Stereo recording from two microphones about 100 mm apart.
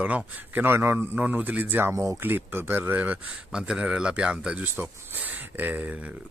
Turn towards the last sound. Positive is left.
turn(degrees=-15)  # may be behind; listen again after turning